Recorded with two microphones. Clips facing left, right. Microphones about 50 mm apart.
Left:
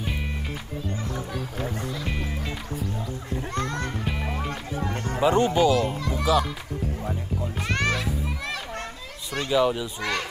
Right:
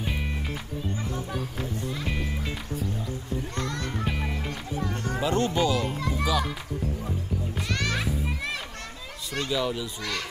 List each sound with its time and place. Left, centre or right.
0.0 s music: centre
2.0 s music: centre
3.5 s music: left
4.0 s music: centre
4.5 s music: left
5.2 s speech: centre
5.9 s children playing: centre
6.2 s a child's voice: centre
7.6 s music: left
9.5 s a child's voice: centre